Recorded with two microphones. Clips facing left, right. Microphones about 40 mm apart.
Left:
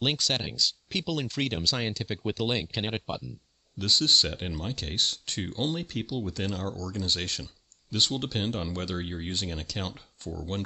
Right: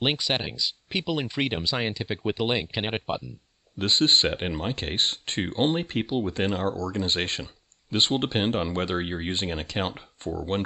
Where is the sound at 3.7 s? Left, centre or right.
Right.